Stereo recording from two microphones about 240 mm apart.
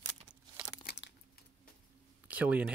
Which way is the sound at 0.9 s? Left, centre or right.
Left.